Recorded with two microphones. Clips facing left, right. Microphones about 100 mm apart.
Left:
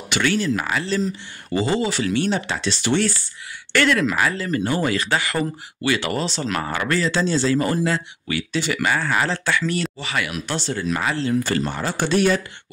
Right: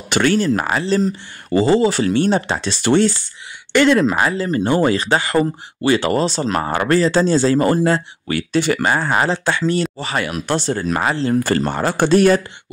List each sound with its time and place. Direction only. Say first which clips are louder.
0.1 s speech: right 5 dB; 40° right (ahead or behind)
3.7 s speech: right 5 dB; 25° right (ahead or behind); by 8.8 s 50° right (ahead or behind)
8.8 s speech: right 4 dB; 35° right (ahead or behind)